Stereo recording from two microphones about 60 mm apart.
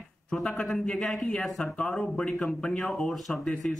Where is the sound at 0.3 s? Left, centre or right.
Centre.